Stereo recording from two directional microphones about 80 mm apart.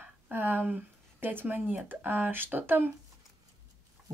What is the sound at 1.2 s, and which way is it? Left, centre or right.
Speech, right.